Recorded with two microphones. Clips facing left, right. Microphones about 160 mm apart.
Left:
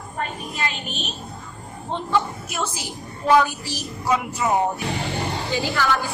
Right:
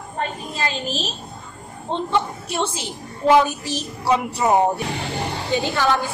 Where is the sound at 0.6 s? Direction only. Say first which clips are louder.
Right 5 dB; 30° right (ahead or behind).